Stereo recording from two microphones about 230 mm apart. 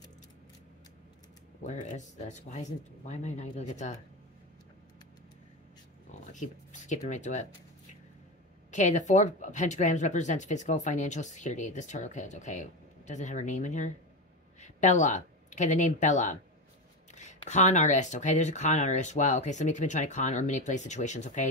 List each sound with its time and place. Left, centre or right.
1.6 s speech: left
6.3 s speech: left
8.7 s speech: left